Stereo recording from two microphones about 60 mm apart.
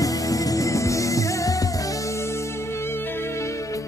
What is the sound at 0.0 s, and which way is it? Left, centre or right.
Music, left.